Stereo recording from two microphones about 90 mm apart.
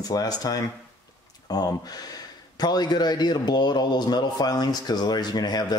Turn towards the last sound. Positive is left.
turn(degrees=50)  # may be behind; listen again after turning